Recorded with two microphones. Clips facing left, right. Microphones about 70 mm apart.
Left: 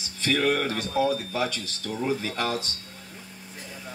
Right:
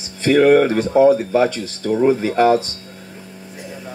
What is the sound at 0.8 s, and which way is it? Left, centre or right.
Speech, right.